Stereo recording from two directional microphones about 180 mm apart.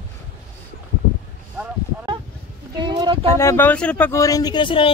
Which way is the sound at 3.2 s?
15° left (ahead or behind).